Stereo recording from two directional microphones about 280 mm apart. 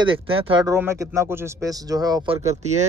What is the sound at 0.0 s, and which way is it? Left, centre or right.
Speech, centre.